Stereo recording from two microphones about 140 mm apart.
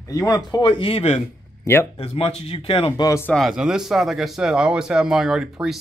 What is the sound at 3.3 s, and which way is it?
Speech, centre (ahead or behind).